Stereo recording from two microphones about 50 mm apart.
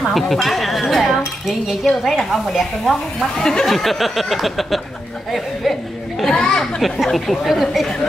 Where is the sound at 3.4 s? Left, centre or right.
Centre.